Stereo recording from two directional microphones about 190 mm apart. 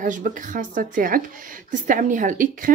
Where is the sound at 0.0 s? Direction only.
45° right (ahead or behind).